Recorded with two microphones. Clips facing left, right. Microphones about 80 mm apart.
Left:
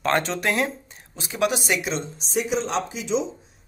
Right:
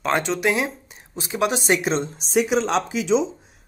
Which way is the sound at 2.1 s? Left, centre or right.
Right.